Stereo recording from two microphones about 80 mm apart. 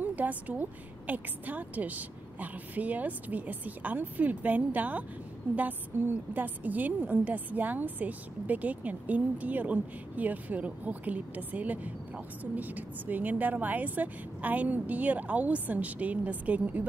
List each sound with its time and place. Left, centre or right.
0.0 s a woman's voice: right